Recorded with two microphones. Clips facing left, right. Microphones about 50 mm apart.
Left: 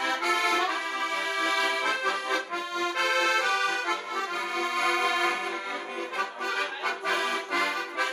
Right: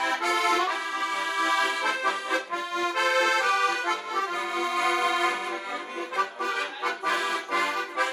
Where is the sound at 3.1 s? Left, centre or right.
Right.